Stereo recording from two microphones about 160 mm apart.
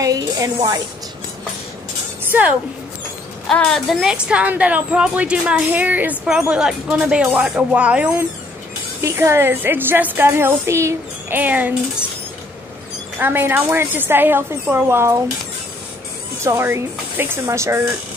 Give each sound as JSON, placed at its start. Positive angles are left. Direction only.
{"t": 0.0, "sound": "speech", "side_deg": -20}
{"t": 2.3, "sound": "a woman's voice", "side_deg": -10}
{"t": 3.4, "sound": "a woman's voice", "side_deg": 0}
{"t": 13.2, "sound": "a woman's voice", "side_deg": -15}
{"t": 16.4, "sound": "a woman's voice", "side_deg": -15}